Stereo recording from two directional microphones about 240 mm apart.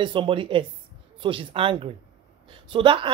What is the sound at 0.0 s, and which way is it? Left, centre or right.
Speech, centre.